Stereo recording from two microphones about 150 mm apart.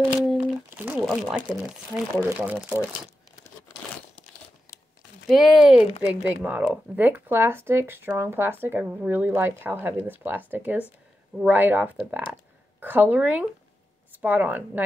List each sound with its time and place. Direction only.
0.0 s crumpling: 5° right (ahead or behind)
2.4 s speech: 10° right (ahead or behind)
5.3 s speech: centre (ahead or behind)